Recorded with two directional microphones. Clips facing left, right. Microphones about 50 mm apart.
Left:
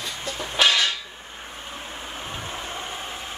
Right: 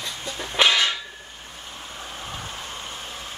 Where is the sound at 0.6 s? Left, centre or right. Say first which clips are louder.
Right 1 dB; right.